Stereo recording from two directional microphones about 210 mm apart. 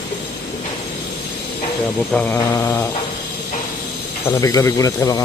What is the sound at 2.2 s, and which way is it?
Speech, 10° left (ahead or behind).